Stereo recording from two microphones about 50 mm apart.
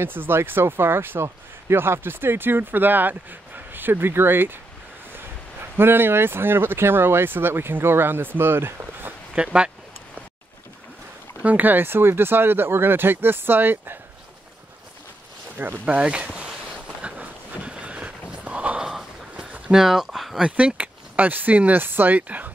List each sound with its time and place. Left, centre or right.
0.0 s speech: right
9.3 s speech: right
11.4 s speech: right
15.5 s speech: right
15.8 s speech: right
16.3 s a sound: right
18.8 s a sound: centre
19.3 s a sound: right
19.7 s speech: centre
20.4 s speech: right